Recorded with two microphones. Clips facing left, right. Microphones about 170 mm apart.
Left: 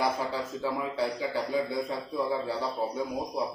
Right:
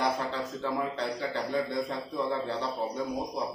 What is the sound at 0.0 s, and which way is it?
A man's voice, 10° left (ahead or behind).